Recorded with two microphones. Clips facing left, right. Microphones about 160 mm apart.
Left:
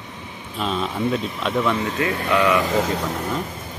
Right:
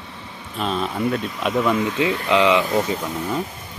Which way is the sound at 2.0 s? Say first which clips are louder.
Right 1 dB; 20° right (ahead or behind).